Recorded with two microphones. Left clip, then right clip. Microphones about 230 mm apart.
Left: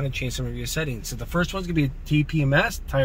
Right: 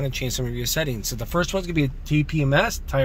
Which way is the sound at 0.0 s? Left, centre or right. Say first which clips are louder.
Right 2 dB; right.